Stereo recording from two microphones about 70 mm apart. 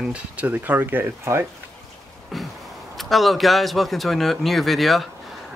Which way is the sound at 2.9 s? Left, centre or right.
Centre.